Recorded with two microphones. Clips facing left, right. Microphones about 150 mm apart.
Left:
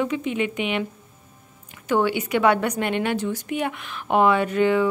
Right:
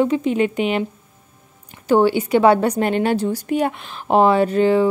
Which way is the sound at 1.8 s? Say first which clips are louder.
Right 6 dB; 30° right (ahead or behind).